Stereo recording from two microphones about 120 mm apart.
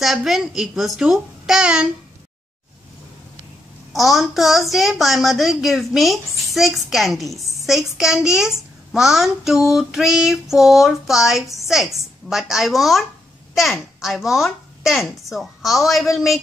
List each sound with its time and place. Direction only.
0.0 s a child's voice: centre (ahead or behind)
3.9 s a child's voice: centre (ahead or behind)